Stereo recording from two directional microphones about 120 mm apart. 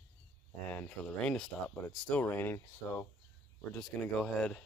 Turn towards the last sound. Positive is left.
turn(degrees=5)  # may be behind; listen again after turning